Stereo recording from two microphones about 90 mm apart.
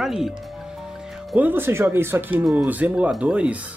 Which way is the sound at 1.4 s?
25° right (ahead or behind).